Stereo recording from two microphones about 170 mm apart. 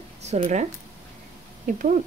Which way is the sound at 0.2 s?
40° right (ahead or behind).